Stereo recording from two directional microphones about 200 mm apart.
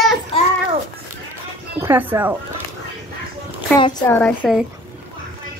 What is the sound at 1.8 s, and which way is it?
Speech, 10° right (ahead or behind).